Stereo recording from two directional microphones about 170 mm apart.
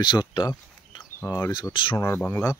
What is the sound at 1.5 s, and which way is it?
Speech, 30° left (ahead or behind).